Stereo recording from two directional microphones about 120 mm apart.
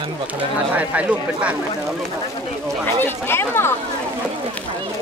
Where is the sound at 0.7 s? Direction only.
10° right (ahead or behind).